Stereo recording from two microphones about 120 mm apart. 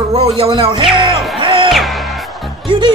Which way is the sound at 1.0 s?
45° right (ahead or behind).